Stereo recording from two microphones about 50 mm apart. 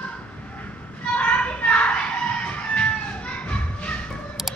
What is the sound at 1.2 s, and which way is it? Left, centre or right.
Chicken, left.